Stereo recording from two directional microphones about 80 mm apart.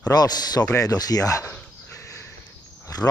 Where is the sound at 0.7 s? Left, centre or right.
Left.